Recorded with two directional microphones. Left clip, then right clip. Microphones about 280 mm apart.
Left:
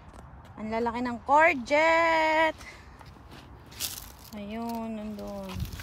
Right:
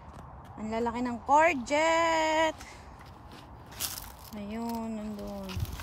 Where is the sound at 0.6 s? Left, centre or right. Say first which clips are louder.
Left 2 dB; centre.